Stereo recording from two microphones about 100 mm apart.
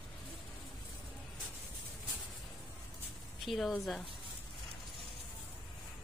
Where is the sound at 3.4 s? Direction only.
Centre (ahead or behind).